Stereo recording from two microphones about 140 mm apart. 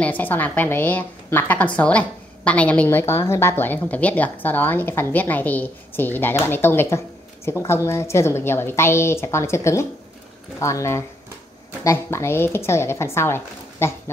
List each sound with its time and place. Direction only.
0.0 s a woman's voice: 10° left (ahead or behind)